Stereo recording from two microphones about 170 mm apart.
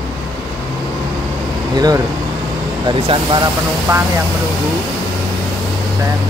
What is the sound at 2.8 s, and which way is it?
Speech, 25° right (ahead or behind).